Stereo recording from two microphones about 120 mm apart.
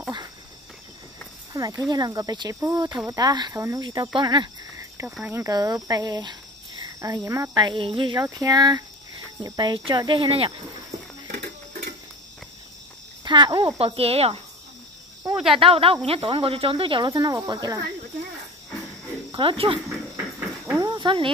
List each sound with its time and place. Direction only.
1.5 s a sound: 25° right (ahead or behind)
1.9 s speech: 35° right (ahead or behind)
3.5 s speech: 25° right (ahead or behind)
5.2 s speech: 20° right (ahead or behind)
7.5 s speech: 40° right (ahead or behind)
13.2 s speech: 40° right (ahead or behind)
13.7 s speech: 55° right (ahead or behind)
15.3 s speech: 5° right (ahead or behind)
15.6 s speech: 50° right (ahead or behind); by 17.8 s 35° right (ahead or behind)
19.3 s speech: 50° right (ahead or behind)
20.3 s a sound: 15° right (ahead or behind)
20.8 s cricket: 40° right (ahead or behind)